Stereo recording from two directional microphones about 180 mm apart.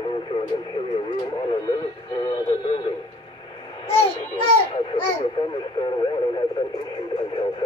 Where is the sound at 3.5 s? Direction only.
30° left (ahead or behind).